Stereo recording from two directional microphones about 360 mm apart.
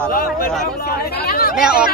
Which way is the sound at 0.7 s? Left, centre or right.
Left.